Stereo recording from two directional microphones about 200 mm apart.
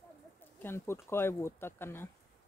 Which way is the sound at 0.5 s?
10° left (ahead or behind).